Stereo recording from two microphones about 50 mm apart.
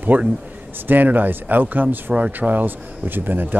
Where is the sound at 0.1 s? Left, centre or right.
Right.